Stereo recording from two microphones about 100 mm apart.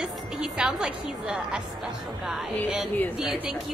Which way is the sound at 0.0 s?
10° right (ahead or behind).